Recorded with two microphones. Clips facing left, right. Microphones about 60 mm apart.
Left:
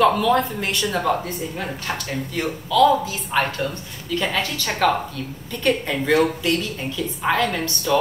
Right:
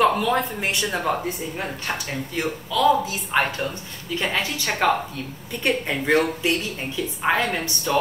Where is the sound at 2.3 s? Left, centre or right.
Centre.